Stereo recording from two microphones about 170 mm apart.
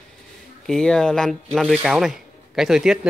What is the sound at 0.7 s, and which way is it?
Speech, 5° left (ahead or behind).